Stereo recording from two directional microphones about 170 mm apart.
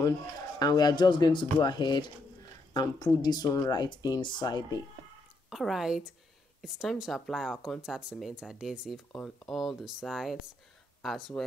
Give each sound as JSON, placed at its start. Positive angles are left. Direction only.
{"t": 0.6, "sound": "speech", "side_deg": 25}
{"t": 5.5, "sound": "speech", "side_deg": 0}